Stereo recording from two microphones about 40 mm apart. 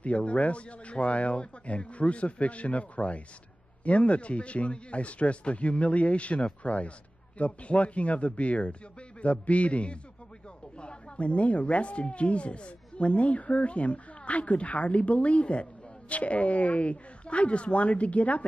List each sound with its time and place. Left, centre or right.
0.0 s speech: left